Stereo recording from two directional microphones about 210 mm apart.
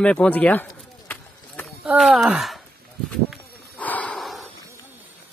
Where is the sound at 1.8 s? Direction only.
Centre (ahead or behind).